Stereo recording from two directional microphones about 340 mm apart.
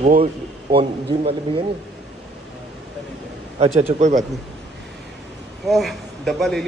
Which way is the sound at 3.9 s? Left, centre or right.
Centre.